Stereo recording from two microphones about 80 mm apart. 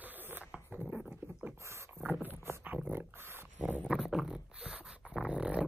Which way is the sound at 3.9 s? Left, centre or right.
Centre.